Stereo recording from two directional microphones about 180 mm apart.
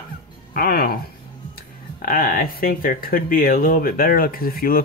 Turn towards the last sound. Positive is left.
turn(degrees=55)  # may be behind; listen again after turning